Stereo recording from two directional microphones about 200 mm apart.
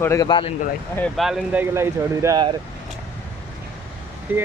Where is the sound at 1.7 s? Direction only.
15° right (ahead or behind).